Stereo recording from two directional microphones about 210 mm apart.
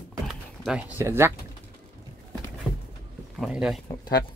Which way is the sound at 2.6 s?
Centre (ahead or behind).